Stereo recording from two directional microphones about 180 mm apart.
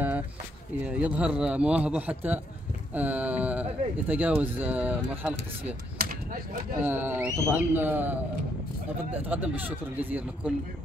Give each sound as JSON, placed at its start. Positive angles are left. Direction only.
{"t": 0.7, "sound": "a man's voice", "side_deg": -5}
{"t": 6.8, "sound": "a man's voice", "side_deg": -10}